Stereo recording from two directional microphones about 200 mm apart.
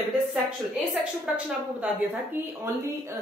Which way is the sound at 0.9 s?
5° right (ahead or behind).